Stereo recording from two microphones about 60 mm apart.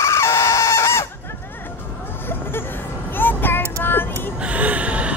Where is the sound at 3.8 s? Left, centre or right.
Left.